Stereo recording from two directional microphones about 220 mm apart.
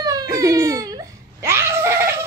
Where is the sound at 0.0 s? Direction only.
15° right (ahead or behind).